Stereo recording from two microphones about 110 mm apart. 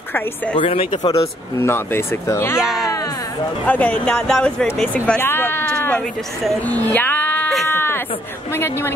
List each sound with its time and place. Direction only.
0.6 s speech: 50° left (ahead or behind)
1.1 s speech: 25° left (ahead or behind)
2.6 s speech: centre (ahead or behind)
3.6 s speech: 15° left (ahead or behind)
5.7 s sheep: 15° left (ahead or behind)
6.7 s music: 15° left (ahead or behind)
7.6 s sheep: 20° left (ahead or behind)
8.5 s speech: 20° left (ahead or behind)